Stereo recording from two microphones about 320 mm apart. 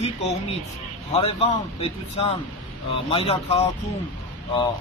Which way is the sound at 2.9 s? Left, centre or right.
Centre.